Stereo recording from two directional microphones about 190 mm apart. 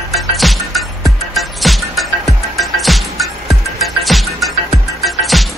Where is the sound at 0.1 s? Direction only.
Centre (ahead or behind).